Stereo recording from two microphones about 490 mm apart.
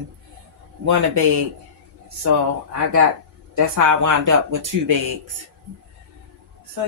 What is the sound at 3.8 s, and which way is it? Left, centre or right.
Speech, right.